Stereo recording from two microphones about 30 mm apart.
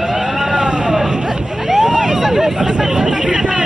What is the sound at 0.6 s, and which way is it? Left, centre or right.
Vehicle, right.